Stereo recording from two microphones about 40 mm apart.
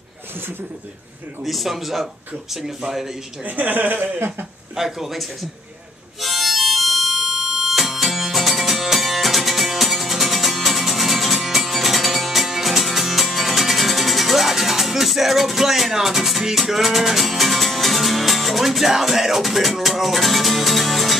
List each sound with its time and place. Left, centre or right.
1.4 s a man's voice: centre
3.4 s a man's voice: right
4.7 s speech: centre
6.2 s harmonica: centre
7.2 s music: centre